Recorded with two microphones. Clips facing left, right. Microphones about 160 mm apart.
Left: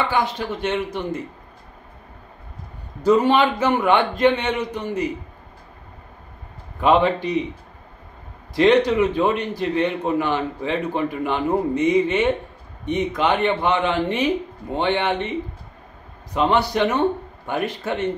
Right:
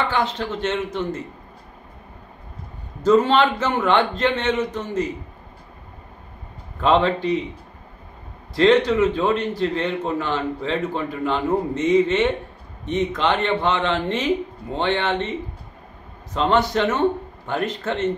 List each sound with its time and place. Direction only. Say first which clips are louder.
0.1 s a man's voice: left 1 dB; 10° left (ahead or behind)
3.0 s a man's voice: even; 10° left (ahead or behind)
6.8 s a man's voice: left 1 dB; 10° left (ahead or behind)
8.5 s a man's voice: even; 15° left (ahead or behind)
16.3 s a man's voice: even; 10° left (ahead or behind)